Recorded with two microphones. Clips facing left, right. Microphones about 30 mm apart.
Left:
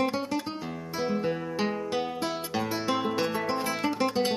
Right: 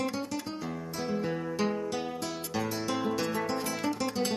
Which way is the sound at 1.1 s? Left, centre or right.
Left.